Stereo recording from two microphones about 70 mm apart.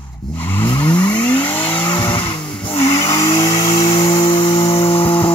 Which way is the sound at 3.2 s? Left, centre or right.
Left.